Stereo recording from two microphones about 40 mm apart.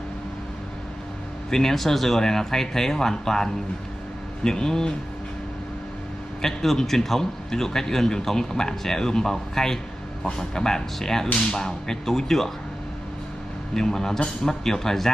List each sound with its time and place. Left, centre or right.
1.5 s a man's voice: centre
6.4 s a man's voice: centre
13.7 s a man's voice: centre